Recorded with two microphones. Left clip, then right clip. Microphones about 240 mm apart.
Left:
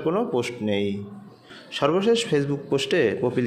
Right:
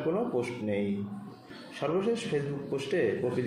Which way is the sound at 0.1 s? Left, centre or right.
Left.